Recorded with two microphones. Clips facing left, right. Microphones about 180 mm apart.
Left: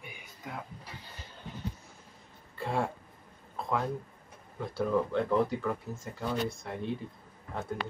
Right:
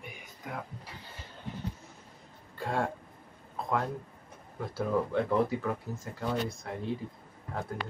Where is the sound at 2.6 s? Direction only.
5° left (ahead or behind).